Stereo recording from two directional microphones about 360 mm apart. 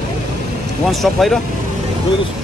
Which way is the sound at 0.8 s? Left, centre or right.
Centre.